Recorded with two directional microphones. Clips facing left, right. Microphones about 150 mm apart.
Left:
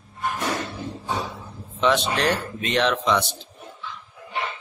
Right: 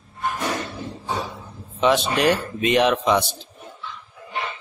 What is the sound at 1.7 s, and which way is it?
Speech, 10° right (ahead or behind).